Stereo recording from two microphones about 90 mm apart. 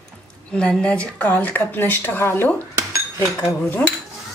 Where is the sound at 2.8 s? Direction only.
35° right (ahead or behind).